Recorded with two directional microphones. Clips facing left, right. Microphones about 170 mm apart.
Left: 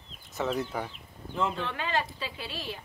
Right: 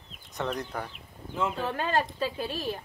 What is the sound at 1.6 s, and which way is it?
A woman's voice, 45° right (ahead or behind).